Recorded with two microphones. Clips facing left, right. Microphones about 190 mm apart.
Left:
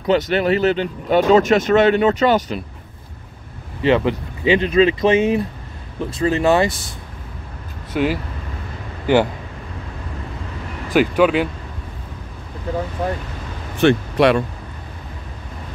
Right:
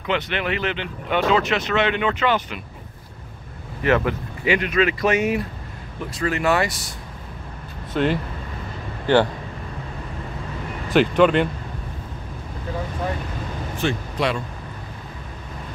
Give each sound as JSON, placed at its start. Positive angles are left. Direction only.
{"t": 0.0, "sound": "speech", "side_deg": 40}
{"t": 3.8, "sound": "speech", "side_deg": 20}
{"t": 7.9, "sound": "speech", "side_deg": 5}
{"t": 10.9, "sound": "speech", "side_deg": 5}
{"t": 13.7, "sound": "speech", "side_deg": 65}